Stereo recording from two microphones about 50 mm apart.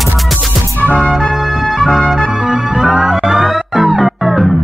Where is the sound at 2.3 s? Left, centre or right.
Centre.